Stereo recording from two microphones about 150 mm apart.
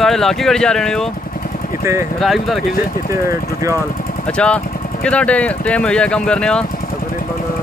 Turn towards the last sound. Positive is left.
turn(degrees=5)  # may be behind; listen again after turning